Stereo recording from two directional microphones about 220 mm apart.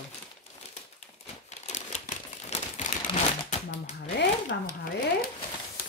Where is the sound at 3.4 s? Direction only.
30° left (ahead or behind).